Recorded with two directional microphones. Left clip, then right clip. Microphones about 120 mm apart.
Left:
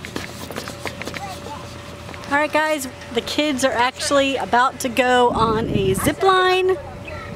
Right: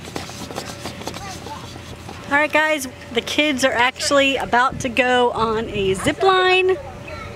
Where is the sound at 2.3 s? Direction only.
Centre (ahead or behind).